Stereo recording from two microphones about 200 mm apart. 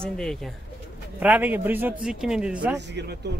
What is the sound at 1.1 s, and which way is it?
Speech, 10° right (ahead or behind).